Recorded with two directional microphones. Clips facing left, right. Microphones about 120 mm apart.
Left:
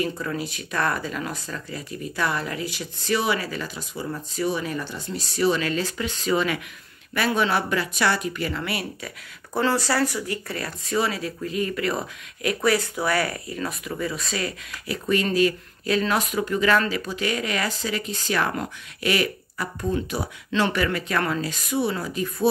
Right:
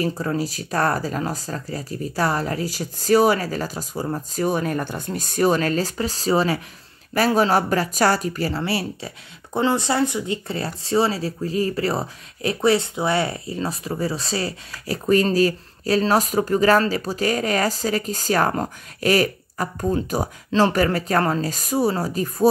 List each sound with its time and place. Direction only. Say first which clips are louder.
0.0 s speech: right 4 dB; 35° right (ahead or behind)